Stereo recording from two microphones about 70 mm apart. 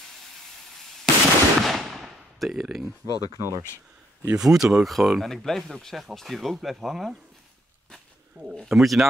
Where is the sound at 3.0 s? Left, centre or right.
Left.